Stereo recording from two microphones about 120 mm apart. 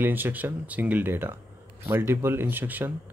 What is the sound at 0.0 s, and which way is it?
Speech, 15° right (ahead or behind).